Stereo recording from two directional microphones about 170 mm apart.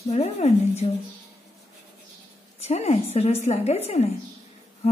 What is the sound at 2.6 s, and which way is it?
A woman's voice, 40° left (ahead or behind).